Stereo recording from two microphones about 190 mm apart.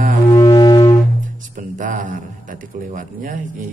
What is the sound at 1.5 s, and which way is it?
A man's voice, 45° right (ahead or behind).